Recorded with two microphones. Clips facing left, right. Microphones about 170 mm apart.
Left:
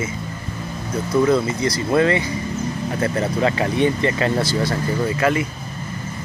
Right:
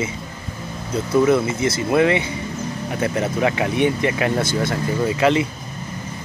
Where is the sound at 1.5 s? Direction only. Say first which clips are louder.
Even; 20° right (ahead or behind).